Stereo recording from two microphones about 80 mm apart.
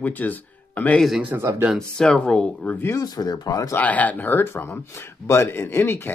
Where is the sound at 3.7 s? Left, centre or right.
Centre.